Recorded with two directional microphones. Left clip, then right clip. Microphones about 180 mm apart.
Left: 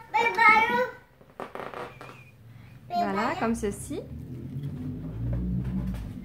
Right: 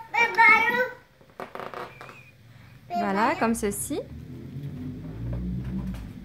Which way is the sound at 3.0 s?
55° right (ahead or behind).